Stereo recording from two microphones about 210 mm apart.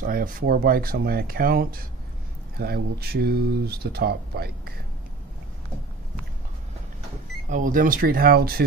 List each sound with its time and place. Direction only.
0.0 s speech: 40° right (ahead or behind)
7.4 s speech: 40° right (ahead or behind)